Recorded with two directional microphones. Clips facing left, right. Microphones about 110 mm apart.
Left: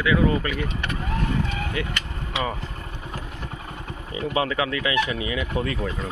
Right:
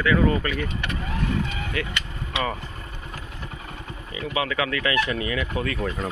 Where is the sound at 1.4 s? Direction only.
5° left (ahead or behind).